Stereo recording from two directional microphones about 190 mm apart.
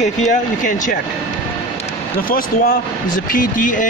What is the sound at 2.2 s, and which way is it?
Speech, 50° left (ahead or behind).